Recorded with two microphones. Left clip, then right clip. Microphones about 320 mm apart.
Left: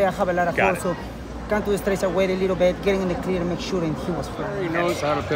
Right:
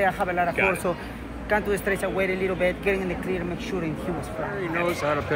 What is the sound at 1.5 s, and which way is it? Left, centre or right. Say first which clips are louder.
Speech: left 1 dB; centre.